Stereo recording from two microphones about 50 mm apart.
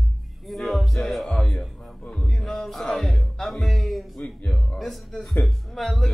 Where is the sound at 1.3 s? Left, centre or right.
Centre.